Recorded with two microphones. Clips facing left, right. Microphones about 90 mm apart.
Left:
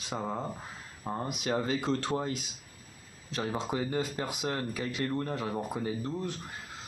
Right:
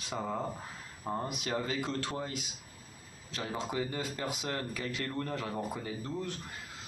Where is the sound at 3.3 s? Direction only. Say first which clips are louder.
Left 3 dB; 30° left (ahead or behind).